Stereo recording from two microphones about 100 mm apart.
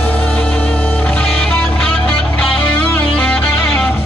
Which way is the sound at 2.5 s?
15° left (ahead or behind).